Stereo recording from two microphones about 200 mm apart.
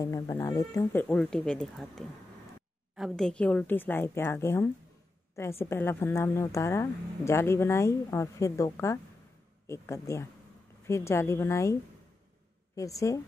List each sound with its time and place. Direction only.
0.0 s speech: 15° left (ahead or behind)